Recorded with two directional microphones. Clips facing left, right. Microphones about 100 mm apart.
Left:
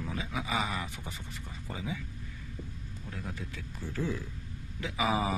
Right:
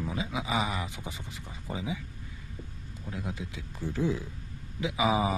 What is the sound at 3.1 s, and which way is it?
Speech, 15° right (ahead or behind).